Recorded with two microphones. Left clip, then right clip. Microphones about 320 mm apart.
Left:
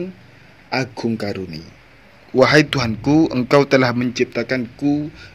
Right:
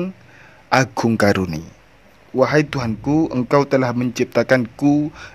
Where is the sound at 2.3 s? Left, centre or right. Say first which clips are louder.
Left 3 dB; centre.